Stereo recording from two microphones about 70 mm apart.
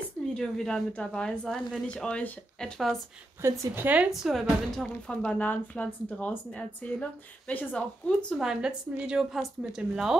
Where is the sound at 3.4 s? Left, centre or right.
Right.